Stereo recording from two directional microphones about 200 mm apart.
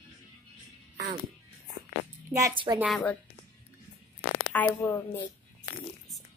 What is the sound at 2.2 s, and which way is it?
Speech, 15° right (ahead or behind).